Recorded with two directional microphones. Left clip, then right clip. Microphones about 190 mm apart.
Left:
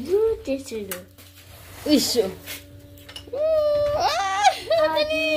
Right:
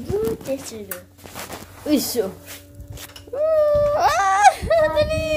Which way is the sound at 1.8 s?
10° right (ahead or behind).